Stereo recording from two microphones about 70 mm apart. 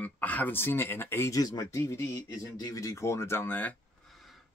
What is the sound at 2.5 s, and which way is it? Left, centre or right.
Speech, left.